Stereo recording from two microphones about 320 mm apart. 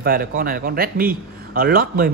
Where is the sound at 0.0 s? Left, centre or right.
Right.